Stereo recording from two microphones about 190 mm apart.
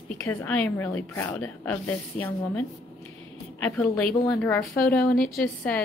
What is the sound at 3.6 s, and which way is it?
Speech, 5° left (ahead or behind).